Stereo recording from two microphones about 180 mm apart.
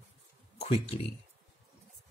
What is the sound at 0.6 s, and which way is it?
Speech, 30° left (ahead or behind).